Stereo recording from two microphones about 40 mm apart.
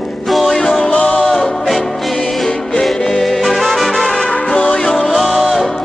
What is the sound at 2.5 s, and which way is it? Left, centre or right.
Music, centre.